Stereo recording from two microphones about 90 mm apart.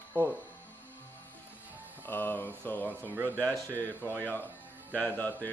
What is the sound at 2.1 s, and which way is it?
Speech, 20° left (ahead or behind).